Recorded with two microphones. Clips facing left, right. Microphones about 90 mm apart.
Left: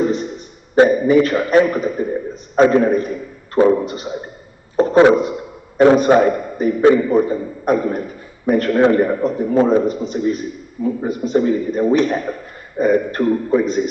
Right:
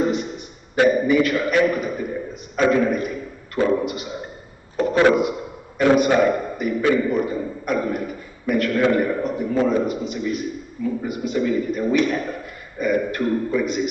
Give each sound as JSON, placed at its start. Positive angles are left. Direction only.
{"t": 0.7, "sound": "a man's voice", "side_deg": 35}